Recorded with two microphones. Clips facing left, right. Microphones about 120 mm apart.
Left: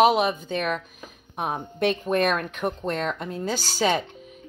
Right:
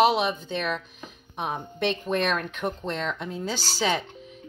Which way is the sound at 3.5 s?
45° left (ahead or behind).